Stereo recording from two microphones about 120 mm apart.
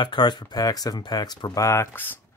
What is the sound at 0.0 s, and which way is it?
Speech, 40° left (ahead or behind).